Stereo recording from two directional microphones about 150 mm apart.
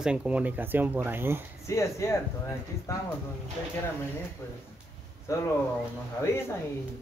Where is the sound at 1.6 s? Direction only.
20° left (ahead or behind).